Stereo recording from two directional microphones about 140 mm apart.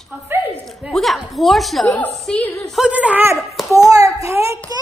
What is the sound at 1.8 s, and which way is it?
A woman's voice, 10° left (ahead or behind).